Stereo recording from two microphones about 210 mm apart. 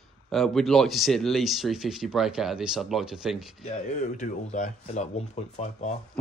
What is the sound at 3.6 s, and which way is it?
Speech, 35° left (ahead or behind).